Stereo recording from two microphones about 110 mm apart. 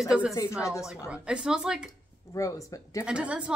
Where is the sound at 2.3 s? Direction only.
30° left (ahead or behind).